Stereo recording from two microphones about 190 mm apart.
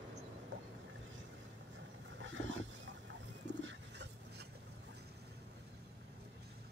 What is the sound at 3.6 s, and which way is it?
Bird, 70° right (ahead or behind).